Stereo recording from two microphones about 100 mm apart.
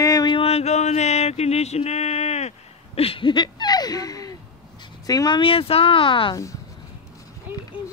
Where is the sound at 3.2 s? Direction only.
50° left (ahead or behind).